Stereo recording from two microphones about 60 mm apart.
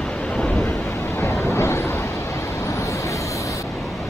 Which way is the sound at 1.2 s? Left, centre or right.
Left.